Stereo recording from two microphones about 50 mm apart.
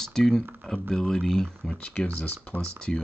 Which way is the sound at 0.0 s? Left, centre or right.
Centre.